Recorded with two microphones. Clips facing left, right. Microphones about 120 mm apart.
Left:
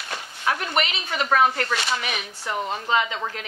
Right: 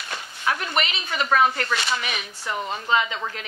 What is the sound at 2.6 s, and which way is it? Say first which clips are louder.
Speech: right 1 dB; 40° left (ahead or behind).